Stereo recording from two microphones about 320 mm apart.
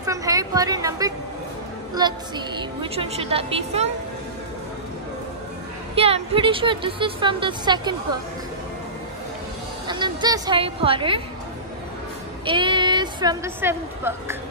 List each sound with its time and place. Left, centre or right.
0.0 s a sound: centre
2.0 s speech: centre
5.9 s speech: centre
9.8 s a woman's voice: centre
12.4 s speech: centre